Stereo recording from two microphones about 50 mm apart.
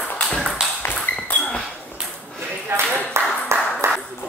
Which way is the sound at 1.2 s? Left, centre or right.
Left.